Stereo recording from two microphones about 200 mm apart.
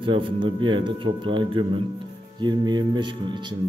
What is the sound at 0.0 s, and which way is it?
Speech, 25° right (ahead or behind).